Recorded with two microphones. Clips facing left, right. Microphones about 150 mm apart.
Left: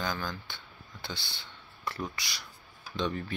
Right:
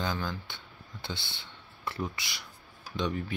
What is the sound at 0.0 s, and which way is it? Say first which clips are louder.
Speech: right 1 dB; 25° right (ahead or behind).